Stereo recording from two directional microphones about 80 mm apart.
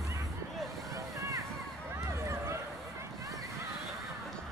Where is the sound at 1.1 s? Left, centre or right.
Right.